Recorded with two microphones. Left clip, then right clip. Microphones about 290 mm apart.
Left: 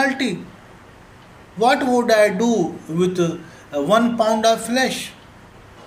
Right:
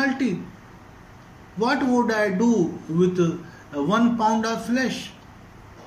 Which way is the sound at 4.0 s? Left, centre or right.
Left.